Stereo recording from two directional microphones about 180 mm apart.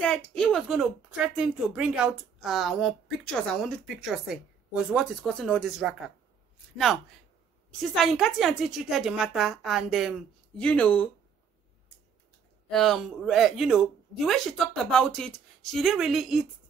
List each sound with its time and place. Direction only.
0.0 s a woman's voice: 5° left (ahead or behind)
7.9 s a woman's voice: centre (ahead or behind)
12.6 s a woman's voice: centre (ahead or behind)